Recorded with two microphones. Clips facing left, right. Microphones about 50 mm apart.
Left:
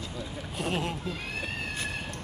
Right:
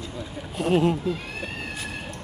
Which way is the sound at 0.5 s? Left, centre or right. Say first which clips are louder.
Right 10 dB; centre.